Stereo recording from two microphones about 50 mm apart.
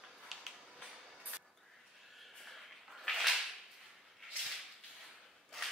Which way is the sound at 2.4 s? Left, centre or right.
Centre.